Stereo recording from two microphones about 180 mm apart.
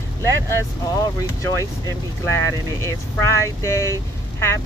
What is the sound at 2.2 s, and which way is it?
Speech, 15° left (ahead or behind).